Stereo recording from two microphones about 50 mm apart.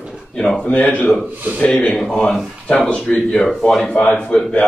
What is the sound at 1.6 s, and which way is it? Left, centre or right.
Speech, left.